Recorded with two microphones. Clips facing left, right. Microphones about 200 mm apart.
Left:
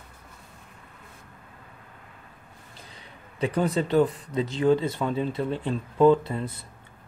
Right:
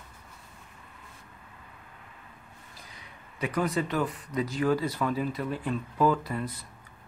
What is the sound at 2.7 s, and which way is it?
Speech, 30° left (ahead or behind).